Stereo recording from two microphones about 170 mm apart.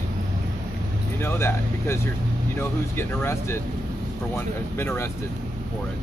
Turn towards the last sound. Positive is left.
turn(degrees=15)  # may be behind; listen again after turning